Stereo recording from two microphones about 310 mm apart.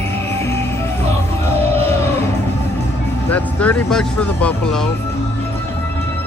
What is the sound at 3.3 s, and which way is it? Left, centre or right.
Speech, centre.